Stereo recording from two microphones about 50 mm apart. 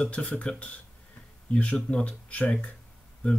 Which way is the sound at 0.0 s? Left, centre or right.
Left.